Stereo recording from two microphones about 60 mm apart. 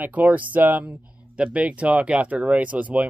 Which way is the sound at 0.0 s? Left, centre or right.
Right.